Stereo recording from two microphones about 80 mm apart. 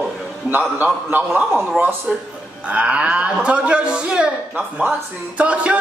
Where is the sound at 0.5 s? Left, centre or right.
Right.